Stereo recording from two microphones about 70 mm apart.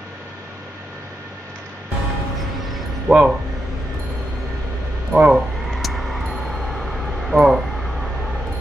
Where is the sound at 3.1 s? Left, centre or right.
Centre.